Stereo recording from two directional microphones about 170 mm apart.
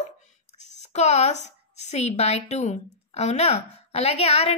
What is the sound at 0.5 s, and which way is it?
A woman's voice, 45° left (ahead or behind).